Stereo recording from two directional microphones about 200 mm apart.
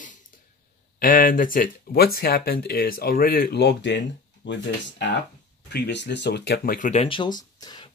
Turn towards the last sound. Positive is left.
turn(degrees=20)  # may be behind; listen again after turning